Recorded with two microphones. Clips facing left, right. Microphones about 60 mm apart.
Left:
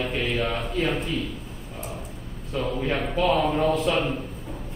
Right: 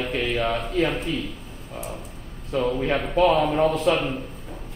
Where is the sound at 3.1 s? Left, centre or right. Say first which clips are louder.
Right 4 dB; centre.